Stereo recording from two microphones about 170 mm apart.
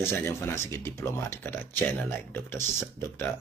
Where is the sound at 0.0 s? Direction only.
15° left (ahead or behind).